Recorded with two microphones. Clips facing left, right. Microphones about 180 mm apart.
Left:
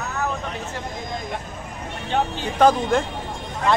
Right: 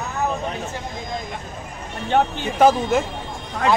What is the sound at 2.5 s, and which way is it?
Speech, 10° right (ahead or behind).